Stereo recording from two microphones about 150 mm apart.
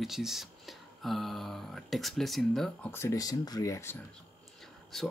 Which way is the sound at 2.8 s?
15° left (ahead or behind).